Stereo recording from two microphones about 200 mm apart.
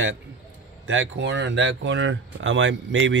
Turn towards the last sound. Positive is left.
turn(degrees=-70)  # may be behind; listen again after turning